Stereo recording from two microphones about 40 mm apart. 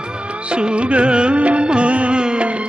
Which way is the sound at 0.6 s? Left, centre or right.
Right.